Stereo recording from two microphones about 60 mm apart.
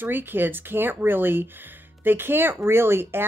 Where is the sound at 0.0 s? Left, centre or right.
Right.